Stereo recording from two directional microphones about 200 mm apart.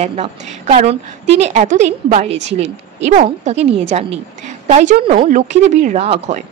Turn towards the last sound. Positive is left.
turn(degrees=-30)  # may be behind; listen again after turning